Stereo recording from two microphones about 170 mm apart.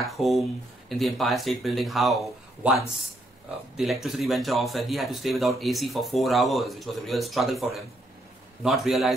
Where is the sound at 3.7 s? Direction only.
Centre (ahead or behind).